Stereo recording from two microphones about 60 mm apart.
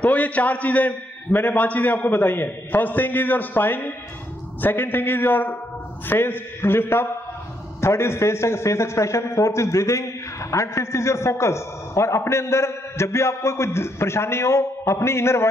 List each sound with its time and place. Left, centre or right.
0.0 s a man's voice: left